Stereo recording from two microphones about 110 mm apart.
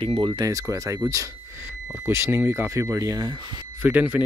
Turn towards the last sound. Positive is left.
turn(degrees=-15)  # may be behind; listen again after turning